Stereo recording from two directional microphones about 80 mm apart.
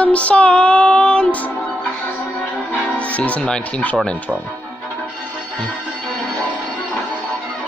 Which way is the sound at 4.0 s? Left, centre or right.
Centre.